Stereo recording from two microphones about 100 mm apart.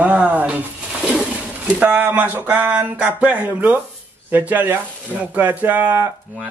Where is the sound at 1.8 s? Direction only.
15° right (ahead or behind).